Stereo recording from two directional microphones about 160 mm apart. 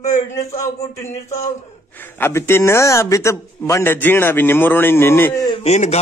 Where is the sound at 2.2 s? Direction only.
15° left (ahead or behind).